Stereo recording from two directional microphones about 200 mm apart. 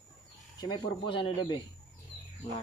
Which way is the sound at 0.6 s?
25° left (ahead or behind).